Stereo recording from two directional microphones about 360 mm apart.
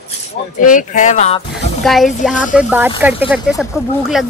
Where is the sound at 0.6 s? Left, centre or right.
Left.